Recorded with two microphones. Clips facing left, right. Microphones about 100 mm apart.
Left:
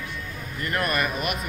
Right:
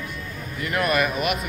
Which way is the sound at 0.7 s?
10° right (ahead or behind).